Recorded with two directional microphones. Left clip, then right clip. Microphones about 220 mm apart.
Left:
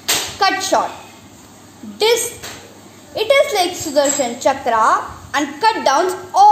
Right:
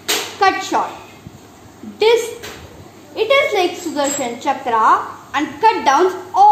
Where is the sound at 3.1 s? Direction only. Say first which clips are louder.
Even; 55° left (ahead or behind).